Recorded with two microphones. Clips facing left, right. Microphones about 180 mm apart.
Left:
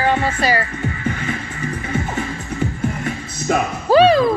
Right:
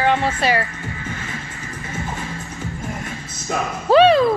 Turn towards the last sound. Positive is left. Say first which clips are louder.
# even
turn(degrees=0)  # may be behind; listen again after turning